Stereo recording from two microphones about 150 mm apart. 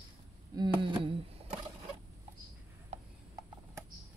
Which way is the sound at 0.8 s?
35° right (ahead or behind).